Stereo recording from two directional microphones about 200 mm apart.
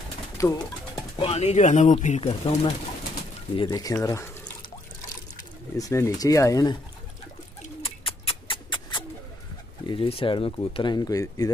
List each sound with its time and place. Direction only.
0.4 s speech: 15° left (ahead or behind)
1.1 s speech: 30° left (ahead or behind)
3.5 s speech: 20° left (ahead or behind)
5.8 s speech: 15° left (ahead or behind)
7.8 s bird: 25° left (ahead or behind)
9.8 s speech: 25° left (ahead or behind)